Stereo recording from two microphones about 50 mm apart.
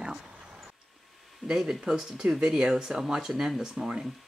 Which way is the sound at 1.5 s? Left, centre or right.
Centre.